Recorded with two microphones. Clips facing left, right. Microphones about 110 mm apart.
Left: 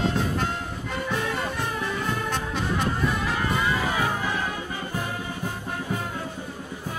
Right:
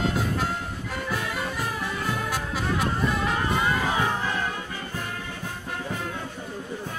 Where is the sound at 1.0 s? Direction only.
5° right (ahead or behind).